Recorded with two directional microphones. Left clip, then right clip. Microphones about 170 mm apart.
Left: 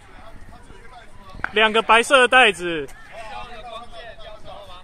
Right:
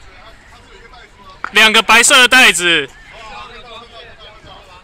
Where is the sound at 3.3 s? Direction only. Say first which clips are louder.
Right 2 dB; 45° left (ahead or behind).